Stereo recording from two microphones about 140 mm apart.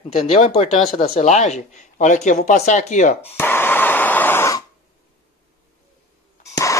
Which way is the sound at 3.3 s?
15° left (ahead or behind).